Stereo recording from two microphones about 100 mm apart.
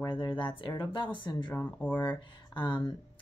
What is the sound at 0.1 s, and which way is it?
Speech, 50° left (ahead or behind).